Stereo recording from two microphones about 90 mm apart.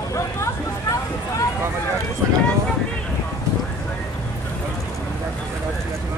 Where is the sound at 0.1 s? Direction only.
35° left (ahead or behind).